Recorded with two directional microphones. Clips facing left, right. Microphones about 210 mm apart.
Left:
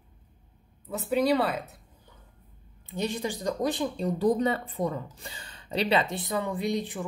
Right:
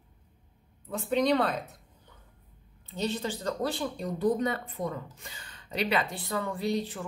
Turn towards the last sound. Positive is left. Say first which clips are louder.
# left 1 dB
turn(degrees=15)  # may be behind; listen again after turning